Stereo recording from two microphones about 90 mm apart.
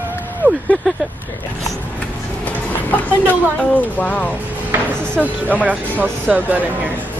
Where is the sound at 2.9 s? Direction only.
15° left (ahead or behind).